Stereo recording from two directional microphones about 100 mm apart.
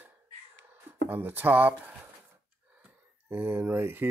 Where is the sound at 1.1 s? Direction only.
20° right (ahead or behind).